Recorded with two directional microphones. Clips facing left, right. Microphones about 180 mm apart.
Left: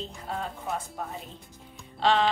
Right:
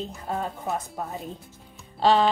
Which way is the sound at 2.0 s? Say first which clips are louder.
Right 4 dB; 40° right (ahead or behind).